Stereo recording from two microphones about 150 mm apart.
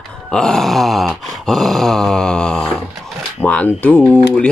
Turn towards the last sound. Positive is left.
turn(degrees=10)  # may be behind; listen again after turning